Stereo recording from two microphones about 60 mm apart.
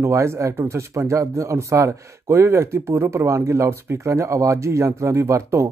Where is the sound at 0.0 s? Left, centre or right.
Right.